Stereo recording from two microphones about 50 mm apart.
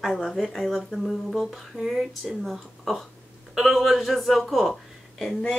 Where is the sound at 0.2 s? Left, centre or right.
Centre.